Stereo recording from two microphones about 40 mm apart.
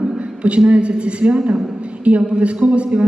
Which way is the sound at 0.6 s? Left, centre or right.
Right.